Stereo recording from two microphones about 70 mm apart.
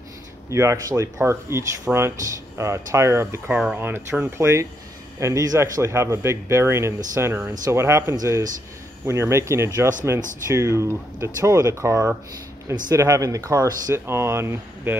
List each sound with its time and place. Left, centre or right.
0.5 s speech: right
5.2 s speech: right
5.6 s speech: right
13.1 s speech: right
13.9 s speech: right